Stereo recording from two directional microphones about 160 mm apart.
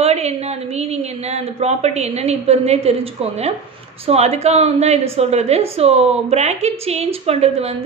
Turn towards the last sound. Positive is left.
turn(degrees=-40)  # may be behind; listen again after turning